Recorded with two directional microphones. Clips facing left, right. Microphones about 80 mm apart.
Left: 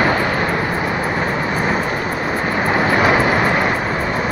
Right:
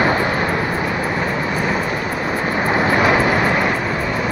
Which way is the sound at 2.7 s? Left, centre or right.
Centre.